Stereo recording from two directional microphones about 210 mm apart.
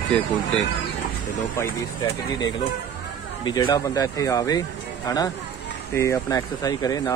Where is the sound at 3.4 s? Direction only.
20° left (ahead or behind).